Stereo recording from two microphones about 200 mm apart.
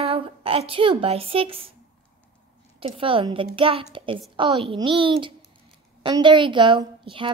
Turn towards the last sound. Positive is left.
turn(degrees=-25)  # may be behind; listen again after turning